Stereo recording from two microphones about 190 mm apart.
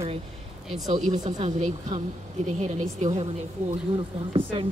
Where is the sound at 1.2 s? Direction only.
40° right (ahead or behind).